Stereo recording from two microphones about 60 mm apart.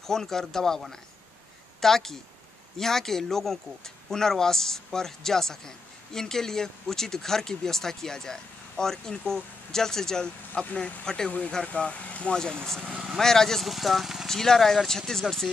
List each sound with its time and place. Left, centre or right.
0.0 s speech: centre
14.3 s speech: centre